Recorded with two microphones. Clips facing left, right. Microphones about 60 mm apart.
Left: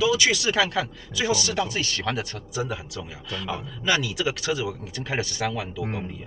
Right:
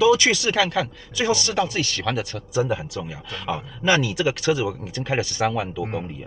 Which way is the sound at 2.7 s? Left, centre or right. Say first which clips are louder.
Right 6 dB; right.